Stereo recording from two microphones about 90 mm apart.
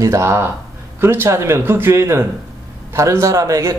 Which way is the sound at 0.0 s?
30° right (ahead or behind).